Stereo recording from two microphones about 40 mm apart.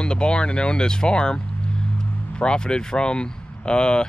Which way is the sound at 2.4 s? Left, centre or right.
Left.